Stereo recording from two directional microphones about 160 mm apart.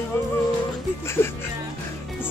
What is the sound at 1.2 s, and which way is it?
Speech, 15° left (ahead or behind).